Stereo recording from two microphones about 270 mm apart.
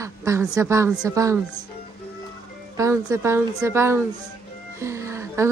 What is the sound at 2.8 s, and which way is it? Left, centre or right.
A woman's voice, centre.